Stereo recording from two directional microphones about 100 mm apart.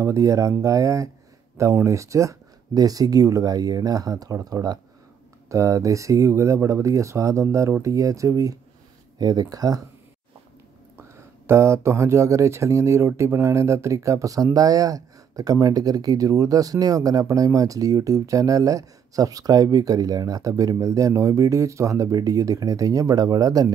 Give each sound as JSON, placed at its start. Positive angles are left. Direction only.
{"t": 0.0, "sound": "speech", "side_deg": -30}
{"t": 11.0, "sound": "speech", "side_deg": -25}